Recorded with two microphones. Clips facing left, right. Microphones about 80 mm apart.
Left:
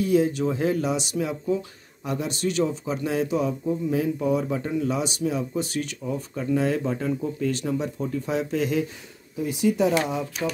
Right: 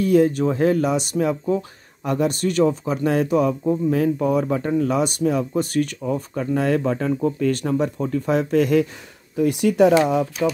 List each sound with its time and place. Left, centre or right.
0.0 s speech: right